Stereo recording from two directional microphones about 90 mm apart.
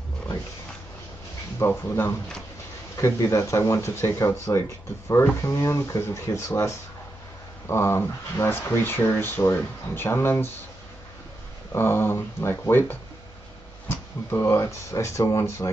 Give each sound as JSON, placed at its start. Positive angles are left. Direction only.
{"t": 1.6, "sound": "speech", "side_deg": 30}
{"t": 3.0, "sound": "speech", "side_deg": 30}
{"t": 11.7, "sound": "speech", "side_deg": 25}
{"t": 14.3, "sound": "speech", "side_deg": 30}